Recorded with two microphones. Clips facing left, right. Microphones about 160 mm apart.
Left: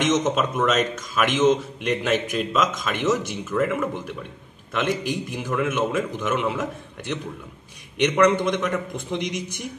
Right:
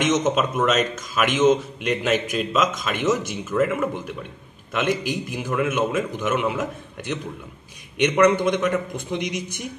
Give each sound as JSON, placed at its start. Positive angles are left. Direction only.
{"t": 0.0, "sound": "speech", "side_deg": 0}